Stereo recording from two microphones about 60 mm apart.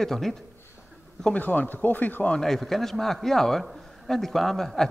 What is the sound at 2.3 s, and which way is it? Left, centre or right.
A man's voice, centre.